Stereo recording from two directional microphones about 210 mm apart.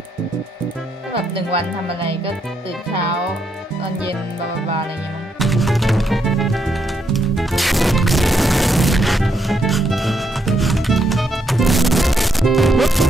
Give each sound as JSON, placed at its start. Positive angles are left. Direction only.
{"t": 1.3, "sound": "speech", "side_deg": -25}
{"t": 5.4, "sound": "music", "side_deg": 0}